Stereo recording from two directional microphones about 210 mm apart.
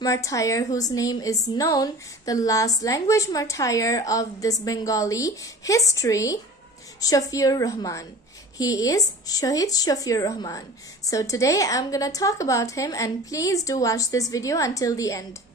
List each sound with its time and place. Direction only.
0.0 s a woman's voice: 15° left (ahead or behind)